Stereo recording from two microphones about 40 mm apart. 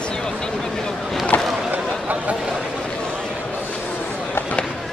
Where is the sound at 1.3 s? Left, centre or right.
Left.